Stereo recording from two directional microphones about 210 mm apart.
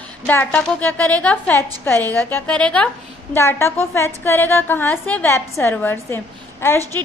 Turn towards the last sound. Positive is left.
turn(degrees=10)  # may be behind; listen again after turning